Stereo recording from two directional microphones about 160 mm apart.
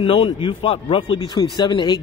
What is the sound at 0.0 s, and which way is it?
Speech, 40° left (ahead or behind).